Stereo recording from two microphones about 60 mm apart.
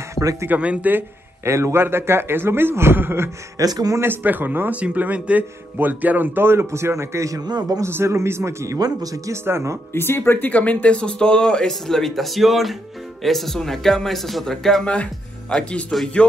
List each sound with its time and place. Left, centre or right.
0.1 s a sound: right
0.5 s speech: right
1.4 s a man's voice: right
3.5 s speech: right
4.0 s a man's voice: right
7.8 s a man's voice: right
8.7 s speech: right
9.4 s a man's voice: right
9.9 s speech: left
10.5 s speech: left
15.9 s speech: centre